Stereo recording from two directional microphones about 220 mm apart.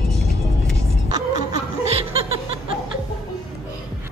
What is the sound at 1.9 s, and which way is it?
Snicker, 25° right (ahead or behind).